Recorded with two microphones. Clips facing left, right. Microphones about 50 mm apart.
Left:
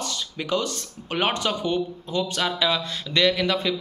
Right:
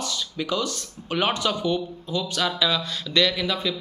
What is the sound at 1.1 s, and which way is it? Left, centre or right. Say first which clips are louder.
A man's voice: even; left.